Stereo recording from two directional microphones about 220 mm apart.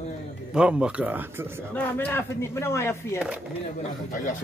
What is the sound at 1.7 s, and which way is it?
Speech, 10° left (ahead or behind).